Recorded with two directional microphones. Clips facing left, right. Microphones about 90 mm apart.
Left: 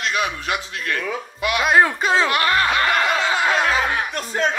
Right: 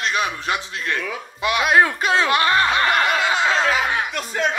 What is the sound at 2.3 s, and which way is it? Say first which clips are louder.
Snicker: right 1 dB; 25° right (ahead or behind).